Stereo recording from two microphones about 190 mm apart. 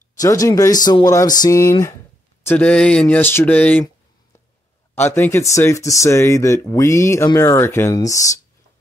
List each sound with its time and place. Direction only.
0.2 s speech: 20° left (ahead or behind)
4.9 s speech: 10° left (ahead or behind)